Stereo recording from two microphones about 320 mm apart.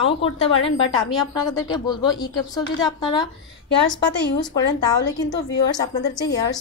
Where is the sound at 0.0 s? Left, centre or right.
Left.